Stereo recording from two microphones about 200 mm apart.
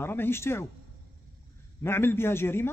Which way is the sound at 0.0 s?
10° left (ahead or behind).